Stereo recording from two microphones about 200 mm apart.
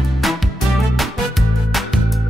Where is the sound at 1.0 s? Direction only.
Centre (ahead or behind).